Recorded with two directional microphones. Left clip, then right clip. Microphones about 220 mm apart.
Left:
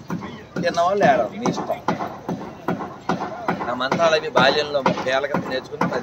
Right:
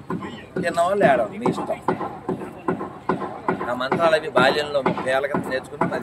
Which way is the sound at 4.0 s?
Centre (ahead or behind).